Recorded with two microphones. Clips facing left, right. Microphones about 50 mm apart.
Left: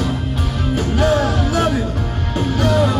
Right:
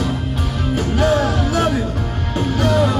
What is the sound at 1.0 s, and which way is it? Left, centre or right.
Music, right.